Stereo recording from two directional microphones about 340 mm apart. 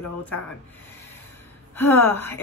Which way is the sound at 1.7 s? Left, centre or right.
Centre.